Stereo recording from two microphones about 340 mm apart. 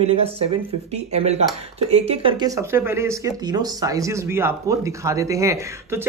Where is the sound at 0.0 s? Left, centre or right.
Centre.